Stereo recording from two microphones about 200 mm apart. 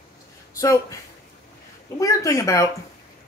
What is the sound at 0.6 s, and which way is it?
Speech, 15° left (ahead or behind).